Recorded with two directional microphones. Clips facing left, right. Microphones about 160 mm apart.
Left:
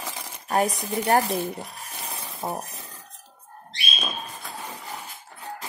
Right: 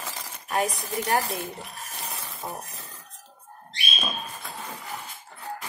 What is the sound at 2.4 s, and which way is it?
Speech, 45° left (ahead or behind).